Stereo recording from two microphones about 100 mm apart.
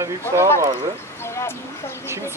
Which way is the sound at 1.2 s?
25° left (ahead or behind).